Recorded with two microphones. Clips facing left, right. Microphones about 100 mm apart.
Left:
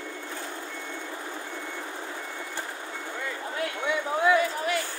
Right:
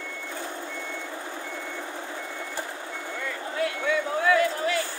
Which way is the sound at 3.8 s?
20° left (ahead or behind).